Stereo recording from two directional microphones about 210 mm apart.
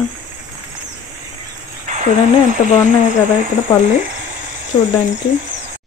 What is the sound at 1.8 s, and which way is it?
Speech, 35° right (ahead or behind).